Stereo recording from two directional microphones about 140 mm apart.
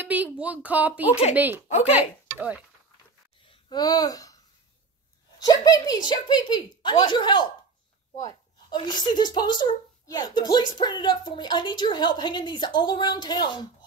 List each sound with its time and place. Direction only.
0.0 s a woman's voice: 10° right (ahead or behind)
3.4 s a sound: 35° left (ahead or behind)
5.4 s speech: 30° left (ahead or behind)